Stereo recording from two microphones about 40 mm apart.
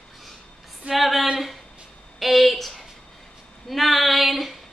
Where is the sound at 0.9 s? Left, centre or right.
Centre.